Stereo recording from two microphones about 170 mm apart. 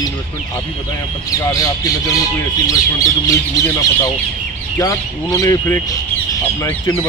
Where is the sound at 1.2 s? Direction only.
20° left (ahead or behind).